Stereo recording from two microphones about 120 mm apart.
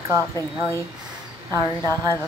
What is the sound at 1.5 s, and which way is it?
Speech, 30° right (ahead or behind).